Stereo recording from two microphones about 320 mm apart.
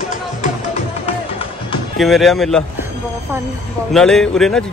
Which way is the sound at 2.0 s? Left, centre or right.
Centre.